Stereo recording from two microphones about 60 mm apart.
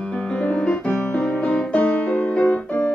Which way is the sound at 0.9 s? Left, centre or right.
Left.